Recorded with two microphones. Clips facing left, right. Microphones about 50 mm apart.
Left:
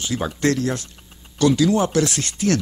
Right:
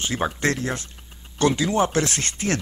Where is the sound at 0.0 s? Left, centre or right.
Right.